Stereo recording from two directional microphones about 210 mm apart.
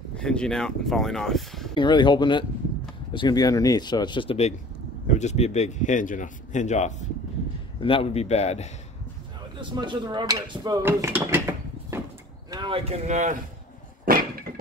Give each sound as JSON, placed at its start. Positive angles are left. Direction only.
{"t": 0.1, "sound": "speech", "side_deg": 5}
{"t": 1.8, "sound": "a man's voice", "side_deg": 20}
{"t": 9.6, "sound": "mechanisms", "side_deg": -20}
{"t": 12.4, "sound": "speech", "side_deg": -20}